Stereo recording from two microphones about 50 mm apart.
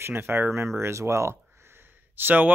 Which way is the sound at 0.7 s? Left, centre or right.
Right.